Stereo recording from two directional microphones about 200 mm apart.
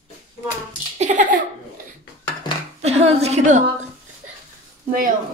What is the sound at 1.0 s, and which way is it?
Laughter, 40° right (ahead or behind).